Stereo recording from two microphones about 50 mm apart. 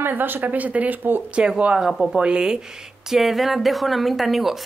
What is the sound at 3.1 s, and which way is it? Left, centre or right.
A woman's voice, centre.